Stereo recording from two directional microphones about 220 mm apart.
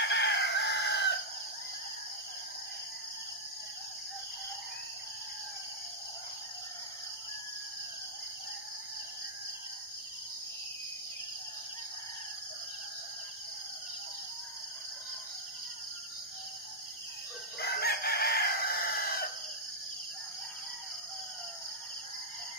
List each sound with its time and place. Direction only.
0.0 s chicken: 50° left (ahead or behind)
17.6 s chicken: 45° left (ahead or behind)